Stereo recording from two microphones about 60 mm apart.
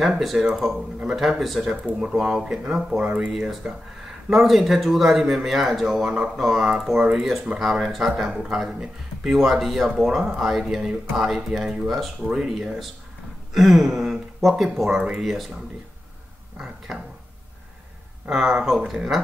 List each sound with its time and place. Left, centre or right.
0.0 s speech: centre; by 3.8 s right
4.0 s speech: centre
13.5 s a sound: centre
14.6 s speech: centre
15.0 s speech: centre
15.2 s speech: centre
16.5 s speech: centre
18.3 s speech: centre